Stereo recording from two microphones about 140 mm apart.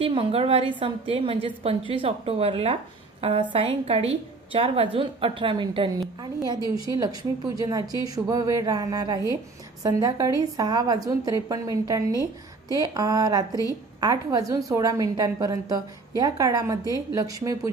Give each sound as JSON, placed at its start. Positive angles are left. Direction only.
{"t": 0.0, "sound": "a woman's voice", "side_deg": -40}
{"t": 5.9, "sound": "a woman's voice", "side_deg": -25}